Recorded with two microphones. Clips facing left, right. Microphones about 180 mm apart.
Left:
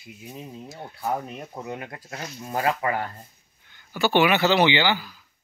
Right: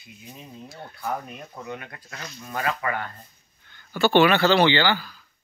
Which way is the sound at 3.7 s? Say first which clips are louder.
Right 3 dB; 15° left (ahead or behind).